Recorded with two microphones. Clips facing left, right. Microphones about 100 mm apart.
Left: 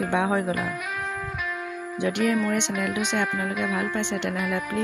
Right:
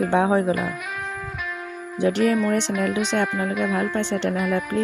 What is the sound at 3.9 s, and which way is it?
Speech, 35° right (ahead or behind).